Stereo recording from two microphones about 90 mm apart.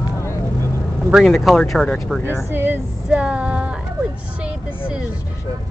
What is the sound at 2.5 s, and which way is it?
Female singing, 20° right (ahead or behind).